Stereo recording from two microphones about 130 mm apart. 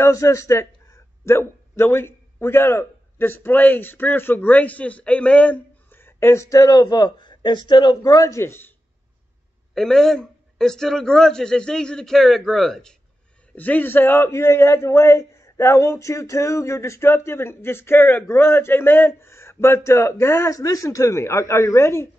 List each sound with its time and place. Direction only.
0.0 s a man's voice: 25° left (ahead or behind)
9.8 s a man's voice: 5° left (ahead or behind)
13.6 s a man's voice: 15° left (ahead or behind)